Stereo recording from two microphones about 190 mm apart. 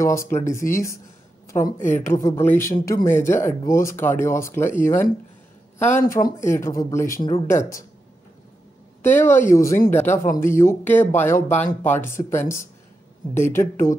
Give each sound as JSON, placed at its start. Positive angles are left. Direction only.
{"t": 0.0, "sound": "speech", "side_deg": 15}
{"t": 5.9, "sound": "speech", "side_deg": 15}
{"t": 9.1, "sound": "speech", "side_deg": 10}